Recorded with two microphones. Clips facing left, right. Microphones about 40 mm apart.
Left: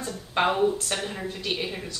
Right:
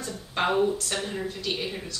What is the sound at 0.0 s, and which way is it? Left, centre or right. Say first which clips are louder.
Speech: left 3 dB; centre.